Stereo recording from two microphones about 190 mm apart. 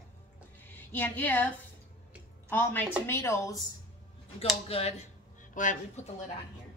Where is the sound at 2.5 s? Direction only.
10° left (ahead or behind).